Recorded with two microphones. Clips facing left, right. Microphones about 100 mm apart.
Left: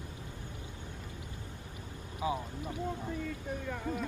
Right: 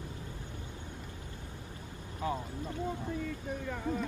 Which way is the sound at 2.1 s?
15° left (ahead or behind).